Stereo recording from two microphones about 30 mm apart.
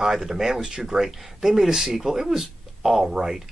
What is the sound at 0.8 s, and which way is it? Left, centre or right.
Speech, centre.